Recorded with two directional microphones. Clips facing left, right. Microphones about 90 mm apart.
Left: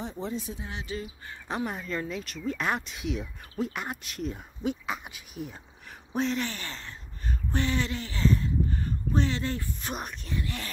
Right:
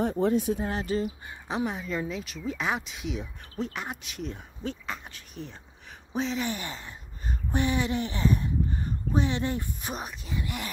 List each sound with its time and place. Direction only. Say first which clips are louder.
0.0 s speech: right 9 dB; 55° right (ahead or behind)
0.7 s speech: right 7 dB; 40° right (ahead or behind)
1.5 s speech: right 2 dB; centre (ahead or behind)
4.6 s speech: left 4 dB; 15° left (ahead or behind)
6.4 s a sound: right 3 dB; 15° right (ahead or behind)
9.9 s speech: left 1 dB; 5° right (ahead or behind)
10.4 s speech: right 2 dB; 15° right (ahead or behind)